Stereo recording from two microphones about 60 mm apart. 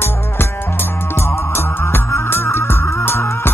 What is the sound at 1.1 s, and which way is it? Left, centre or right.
Music, left.